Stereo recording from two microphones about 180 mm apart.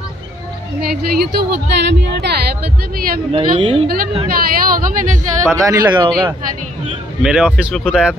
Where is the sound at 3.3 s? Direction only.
25° right (ahead or behind).